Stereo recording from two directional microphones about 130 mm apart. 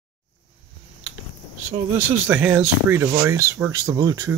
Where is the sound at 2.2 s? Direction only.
10° right (ahead or behind).